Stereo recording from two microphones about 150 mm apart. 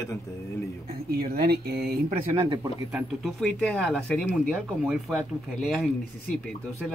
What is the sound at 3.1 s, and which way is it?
Speech, centre (ahead or behind).